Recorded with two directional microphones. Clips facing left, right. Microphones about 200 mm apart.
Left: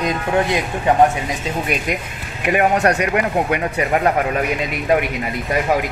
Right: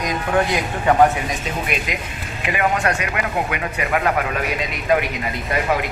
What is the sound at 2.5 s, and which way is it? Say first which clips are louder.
Speech: left 5 dB; 40° left (ahead or behind).